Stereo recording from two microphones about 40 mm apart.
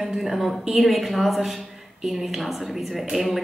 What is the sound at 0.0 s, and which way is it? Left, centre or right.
A woman's voice, centre.